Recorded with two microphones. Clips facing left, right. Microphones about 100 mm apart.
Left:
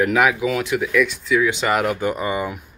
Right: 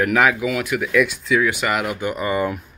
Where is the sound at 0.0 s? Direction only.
15° left (ahead or behind).